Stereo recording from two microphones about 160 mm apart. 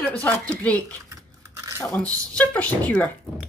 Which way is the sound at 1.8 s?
5° left (ahead or behind).